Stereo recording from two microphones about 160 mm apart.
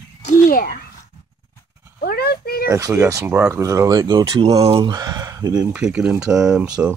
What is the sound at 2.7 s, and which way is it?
Speech, 20° right (ahead or behind).